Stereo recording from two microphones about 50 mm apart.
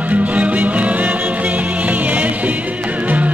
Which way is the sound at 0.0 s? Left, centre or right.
Right.